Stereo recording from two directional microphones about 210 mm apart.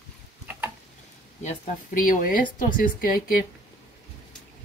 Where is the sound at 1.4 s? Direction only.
35° left (ahead or behind).